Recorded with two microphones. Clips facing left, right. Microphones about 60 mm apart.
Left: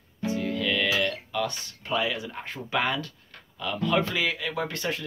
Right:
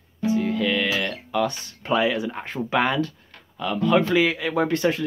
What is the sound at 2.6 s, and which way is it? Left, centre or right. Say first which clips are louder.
Speech: right 6 dB; right.